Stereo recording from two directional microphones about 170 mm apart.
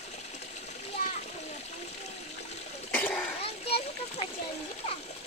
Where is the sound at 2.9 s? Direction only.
10° left (ahead or behind).